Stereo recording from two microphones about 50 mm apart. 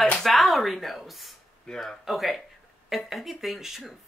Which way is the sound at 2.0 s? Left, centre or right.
Centre.